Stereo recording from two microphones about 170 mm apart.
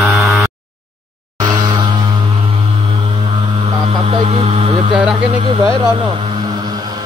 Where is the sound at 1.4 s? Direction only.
25° right (ahead or behind).